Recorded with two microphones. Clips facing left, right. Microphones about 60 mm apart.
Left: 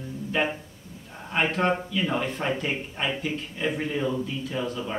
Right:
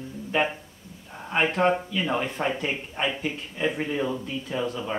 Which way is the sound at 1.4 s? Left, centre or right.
Centre.